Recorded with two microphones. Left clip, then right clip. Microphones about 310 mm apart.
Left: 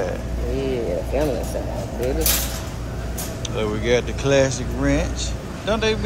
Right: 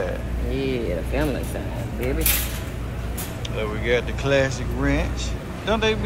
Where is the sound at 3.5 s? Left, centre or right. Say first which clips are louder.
Left 3 dB; centre.